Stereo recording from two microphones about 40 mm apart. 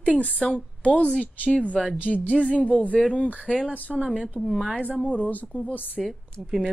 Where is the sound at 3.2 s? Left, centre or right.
Right.